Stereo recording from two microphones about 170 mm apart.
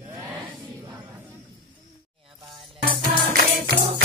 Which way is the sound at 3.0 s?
65° right (ahead or behind).